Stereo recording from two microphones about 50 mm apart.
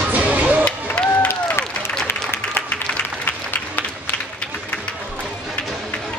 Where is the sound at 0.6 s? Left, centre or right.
Left.